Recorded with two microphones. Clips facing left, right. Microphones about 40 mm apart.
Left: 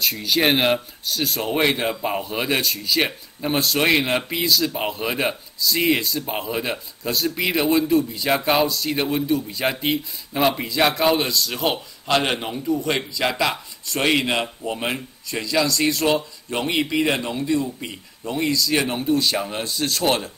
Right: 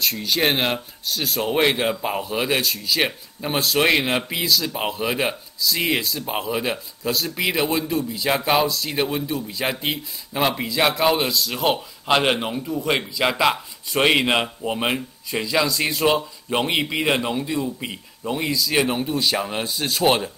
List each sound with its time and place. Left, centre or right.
0.0 s a man's voice: centre
12.1 s a man's voice: centre